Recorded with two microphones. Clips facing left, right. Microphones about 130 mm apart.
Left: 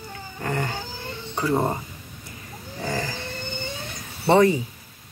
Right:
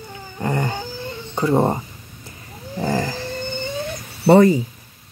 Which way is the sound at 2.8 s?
35° right (ahead or behind).